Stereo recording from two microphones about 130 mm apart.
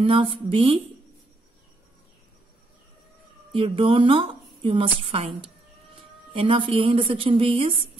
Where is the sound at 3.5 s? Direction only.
45° right (ahead or behind).